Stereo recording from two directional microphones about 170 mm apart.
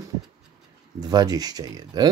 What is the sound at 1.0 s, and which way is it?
Speech, 20° right (ahead or behind).